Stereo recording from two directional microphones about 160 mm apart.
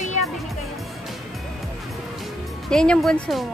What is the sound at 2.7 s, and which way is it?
Speech, 5° left (ahead or behind).